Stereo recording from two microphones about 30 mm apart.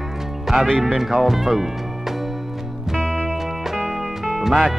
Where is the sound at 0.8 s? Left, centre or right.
Centre.